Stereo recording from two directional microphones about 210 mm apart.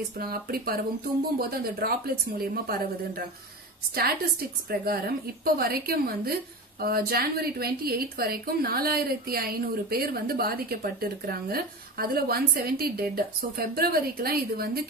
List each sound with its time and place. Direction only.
0.2 s a woman's voice: 45° right (ahead or behind)
4.6 s a woman's voice: 45° right (ahead or behind)